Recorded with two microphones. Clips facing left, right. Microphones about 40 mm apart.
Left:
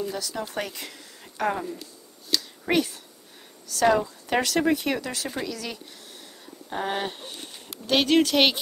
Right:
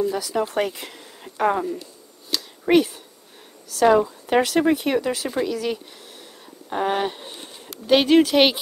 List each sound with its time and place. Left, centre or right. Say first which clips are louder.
0.0 s speech: right 8 dB; centre
2.3 s finger snapping: right 6 dB; centre
3.7 s speech: right 5 dB; centre
6.7 s a sound: right 6 dB; centre
7.8 s speech: right 5 dB; centre